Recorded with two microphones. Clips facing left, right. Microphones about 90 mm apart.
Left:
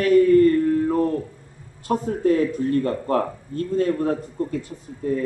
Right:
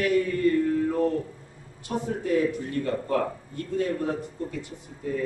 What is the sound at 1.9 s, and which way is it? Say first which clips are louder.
Speech: left 7 dB; 55° left (ahead or behind).